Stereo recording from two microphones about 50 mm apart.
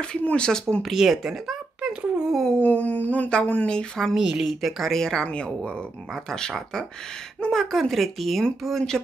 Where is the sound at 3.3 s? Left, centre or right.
Left.